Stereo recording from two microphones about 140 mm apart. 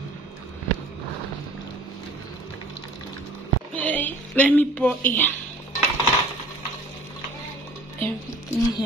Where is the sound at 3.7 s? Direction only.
10° left (ahead or behind).